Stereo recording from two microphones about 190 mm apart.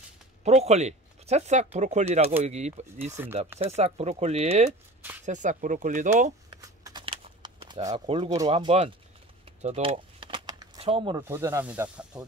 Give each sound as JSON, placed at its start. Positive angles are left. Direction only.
{"t": 0.4, "sound": "speech", "side_deg": -35}
{"t": 3.1, "sound": "speech", "side_deg": -10}
{"t": 3.5, "sound": "speech", "side_deg": -35}
{"t": 6.6, "sound": "a sound", "side_deg": -20}
{"t": 7.9, "sound": "speech", "side_deg": -30}
{"t": 9.6, "sound": "a sound", "side_deg": -30}
{"t": 11.1, "sound": "speech", "side_deg": -15}